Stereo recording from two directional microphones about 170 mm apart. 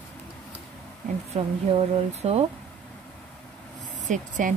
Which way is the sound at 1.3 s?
40° right (ahead or behind).